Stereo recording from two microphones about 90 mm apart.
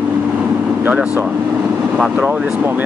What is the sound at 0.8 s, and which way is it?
Speech, 15° right (ahead or behind).